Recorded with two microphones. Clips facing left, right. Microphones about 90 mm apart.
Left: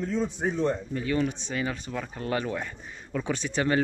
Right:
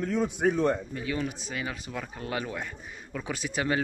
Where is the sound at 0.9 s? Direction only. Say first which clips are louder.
Left 5 dB; 5° right (ahead or behind).